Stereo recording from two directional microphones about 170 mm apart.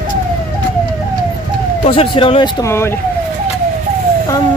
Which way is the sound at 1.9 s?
30° left (ahead or behind).